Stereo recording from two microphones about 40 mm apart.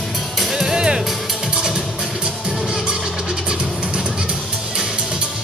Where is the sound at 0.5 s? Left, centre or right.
Centre.